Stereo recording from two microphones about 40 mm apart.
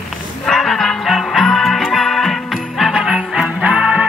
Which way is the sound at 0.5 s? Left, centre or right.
Centre.